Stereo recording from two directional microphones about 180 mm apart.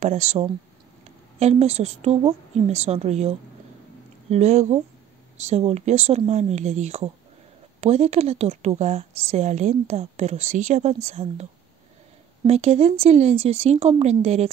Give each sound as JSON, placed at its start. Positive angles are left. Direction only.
{"t": 0.0, "sound": "a woman's voice", "side_deg": -35}
{"t": 12.4, "sound": "a woman's voice", "side_deg": -35}